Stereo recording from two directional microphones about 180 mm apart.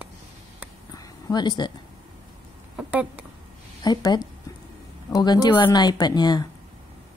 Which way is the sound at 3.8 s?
20° left (ahead or behind).